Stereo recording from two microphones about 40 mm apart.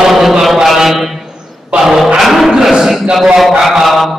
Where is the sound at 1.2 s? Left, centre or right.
Centre.